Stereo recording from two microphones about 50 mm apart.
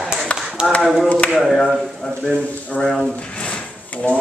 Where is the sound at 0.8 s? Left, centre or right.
Centre.